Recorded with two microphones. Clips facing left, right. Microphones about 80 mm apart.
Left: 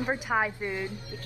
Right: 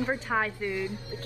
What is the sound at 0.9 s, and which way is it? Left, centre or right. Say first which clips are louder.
Speech: right 2 dB; right.